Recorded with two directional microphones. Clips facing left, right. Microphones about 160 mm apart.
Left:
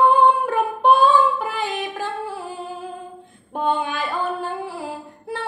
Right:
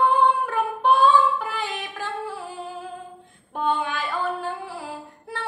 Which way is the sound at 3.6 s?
15° left (ahead or behind).